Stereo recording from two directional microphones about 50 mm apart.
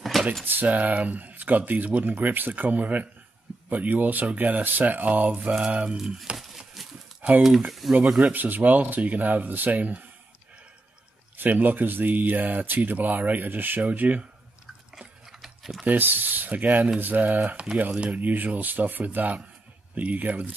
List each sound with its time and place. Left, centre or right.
0.1 s a sound: centre
0.5 s speech: right
2.1 s speech: right
5.5 s speech: right
5.9 s speech: centre
6.8 s a sound: centre
7.2 s a sound: right
7.8 s speech: centre
8.2 s speech: right
11.3 s speech: right
15.4 s typing: centre
15.8 s speech: right